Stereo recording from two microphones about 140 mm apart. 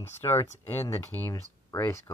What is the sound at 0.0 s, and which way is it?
Speech, 15° left (ahead or behind).